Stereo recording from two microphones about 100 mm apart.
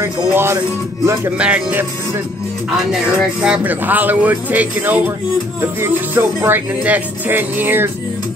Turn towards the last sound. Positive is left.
turn(degrees=-20)  # may be behind; listen again after turning